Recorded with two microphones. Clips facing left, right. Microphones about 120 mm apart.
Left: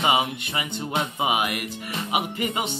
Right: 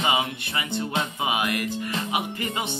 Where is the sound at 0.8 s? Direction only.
15° left (ahead or behind).